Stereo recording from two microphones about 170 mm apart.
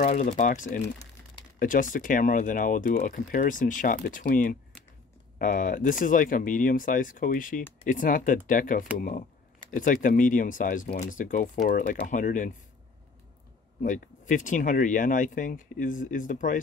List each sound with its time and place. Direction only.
0.0 s speech: 45° left (ahead or behind)
13.8 s speech: 50° left (ahead or behind)